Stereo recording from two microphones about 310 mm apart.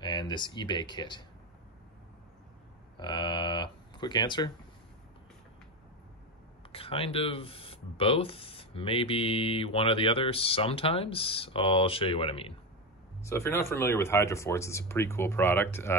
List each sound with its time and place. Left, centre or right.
0.0 s speech: centre
3.0 s speech: centre
6.7 s speech: centre